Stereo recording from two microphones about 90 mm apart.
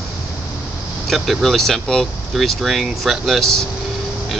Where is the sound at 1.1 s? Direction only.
Centre (ahead or behind).